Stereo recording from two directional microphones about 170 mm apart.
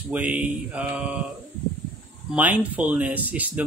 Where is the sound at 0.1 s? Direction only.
5° right (ahead or behind).